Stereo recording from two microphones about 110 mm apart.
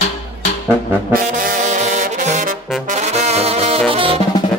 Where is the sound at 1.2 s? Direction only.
90° right; by 3.8 s 65° right (ahead or behind).